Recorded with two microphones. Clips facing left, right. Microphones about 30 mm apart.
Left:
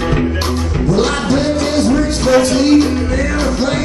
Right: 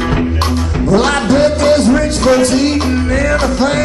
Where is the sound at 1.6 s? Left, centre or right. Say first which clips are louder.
Right 4 dB; right.